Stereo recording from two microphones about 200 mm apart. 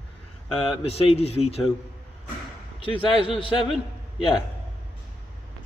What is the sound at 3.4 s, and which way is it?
Speech, 25° left (ahead or behind).